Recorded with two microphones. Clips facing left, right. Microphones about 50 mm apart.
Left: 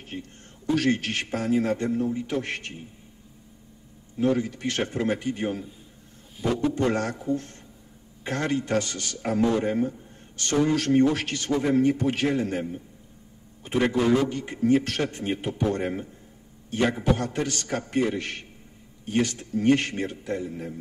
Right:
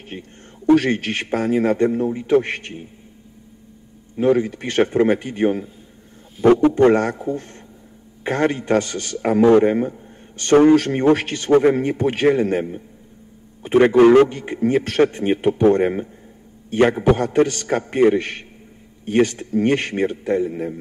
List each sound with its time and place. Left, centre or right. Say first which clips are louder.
0.1 s a man's voice: right 2 dB; right
0.9 s a man's voice: right 6 dB; right
4.2 s a man's voice: right 7 dB; right
6.4 s a man's voice: right 12 dB; right
6.7 s a man's voice: right 10 dB; right
9.4 s a man's voice: right 10 dB; right
13.9 s a man's voice: right 12 dB; right
14.3 s a man's voice: right 3 dB; right